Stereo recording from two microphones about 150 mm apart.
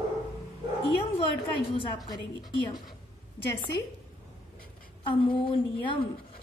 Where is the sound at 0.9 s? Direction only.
35° left (ahead or behind).